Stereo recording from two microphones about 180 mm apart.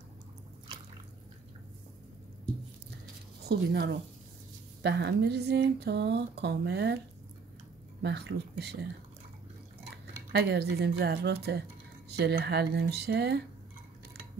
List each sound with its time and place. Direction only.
3.4 s speech: 65° right (ahead or behind)
8.0 s speech: 65° right (ahead or behind)
10.3 s speech: 65° right (ahead or behind)